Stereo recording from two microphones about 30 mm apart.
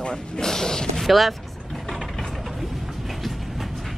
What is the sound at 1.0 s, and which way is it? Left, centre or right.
Speech, centre.